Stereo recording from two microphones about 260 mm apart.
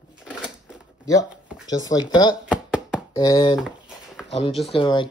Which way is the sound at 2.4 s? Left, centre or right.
Centre.